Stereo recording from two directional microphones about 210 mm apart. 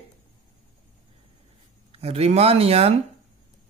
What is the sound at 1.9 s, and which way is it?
Speech, 30° right (ahead or behind).